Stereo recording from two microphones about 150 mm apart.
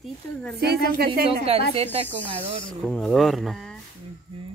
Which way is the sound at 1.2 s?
40° right (ahead or behind).